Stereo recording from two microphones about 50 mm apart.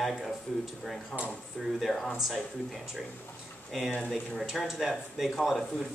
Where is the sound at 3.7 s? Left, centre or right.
Centre.